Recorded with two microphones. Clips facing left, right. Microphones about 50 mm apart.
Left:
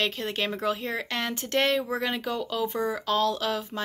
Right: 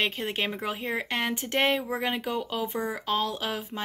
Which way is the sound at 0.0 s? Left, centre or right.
Centre.